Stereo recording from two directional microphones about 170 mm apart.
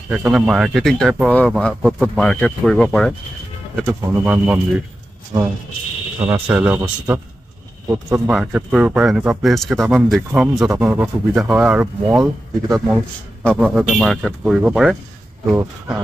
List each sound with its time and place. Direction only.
0.1 s speech: 5° right (ahead or behind)
3.8 s speech: 10° right (ahead or behind)
5.3 s speech: 25° right (ahead or behind)
6.2 s speech: 10° right (ahead or behind)
7.9 s speech: 15° right (ahead or behind)
12.2 s speech: 20° right (ahead or behind)
12.9 s a man's voice: 5° left (ahead or behind)
13.6 s speech: 5° right (ahead or behind)